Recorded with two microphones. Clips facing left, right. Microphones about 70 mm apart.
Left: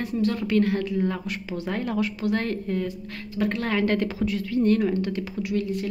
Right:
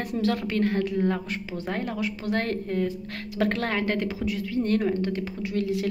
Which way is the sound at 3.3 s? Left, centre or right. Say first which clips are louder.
Even; right.